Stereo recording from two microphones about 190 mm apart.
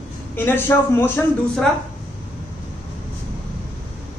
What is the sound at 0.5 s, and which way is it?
A man's voice, 10° left (ahead or behind).